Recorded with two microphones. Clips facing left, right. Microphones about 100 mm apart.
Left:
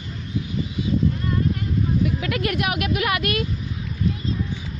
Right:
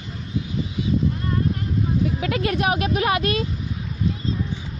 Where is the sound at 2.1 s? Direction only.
30° right (ahead or behind).